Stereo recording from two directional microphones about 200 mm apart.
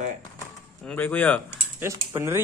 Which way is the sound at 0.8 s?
10° left (ahead or behind).